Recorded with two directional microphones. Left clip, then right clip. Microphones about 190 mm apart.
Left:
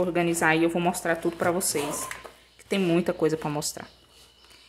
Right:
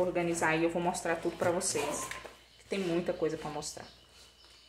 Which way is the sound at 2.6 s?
50° left (ahead or behind).